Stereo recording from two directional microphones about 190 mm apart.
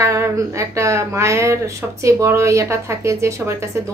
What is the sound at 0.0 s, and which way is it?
Speech, 15° right (ahead or behind).